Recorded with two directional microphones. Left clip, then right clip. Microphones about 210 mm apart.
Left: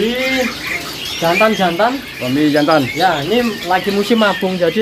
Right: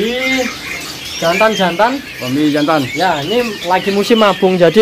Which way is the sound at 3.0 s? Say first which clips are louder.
Even; 20° right (ahead or behind).